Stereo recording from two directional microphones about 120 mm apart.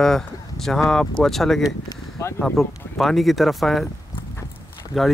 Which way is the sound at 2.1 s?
20° left (ahead or behind).